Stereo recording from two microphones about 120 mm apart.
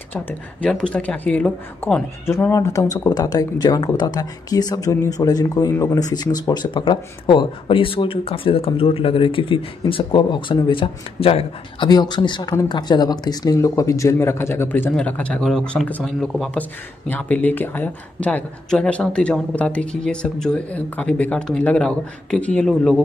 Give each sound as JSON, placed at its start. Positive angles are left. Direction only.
{"t": 0.1, "sound": "speech", "side_deg": 10}
{"t": 2.2, "sound": "speech", "side_deg": 20}
{"t": 11.9, "sound": "speech", "side_deg": 35}